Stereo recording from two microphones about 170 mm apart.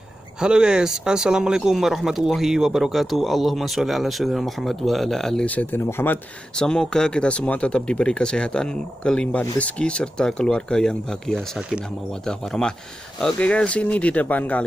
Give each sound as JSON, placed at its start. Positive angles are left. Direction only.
{"t": 0.4, "sound": "speech", "side_deg": -5}